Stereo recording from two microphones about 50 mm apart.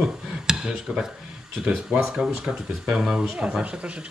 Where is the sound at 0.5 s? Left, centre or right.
Centre.